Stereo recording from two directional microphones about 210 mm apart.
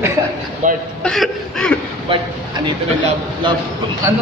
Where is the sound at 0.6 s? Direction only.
35° right (ahead or behind).